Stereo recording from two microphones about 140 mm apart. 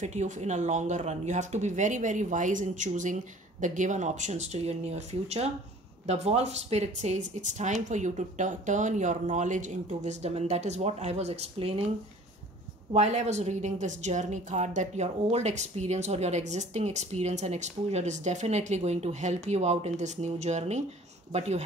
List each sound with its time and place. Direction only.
0.0 s a woman's voice: 55° right (ahead or behind)
12.9 s a woman's voice: 55° right (ahead or behind)